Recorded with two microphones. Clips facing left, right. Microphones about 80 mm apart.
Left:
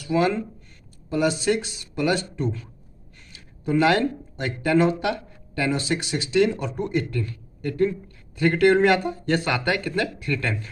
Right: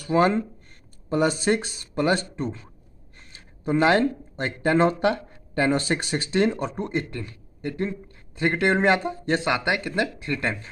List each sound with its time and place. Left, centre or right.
0.0 s speech: right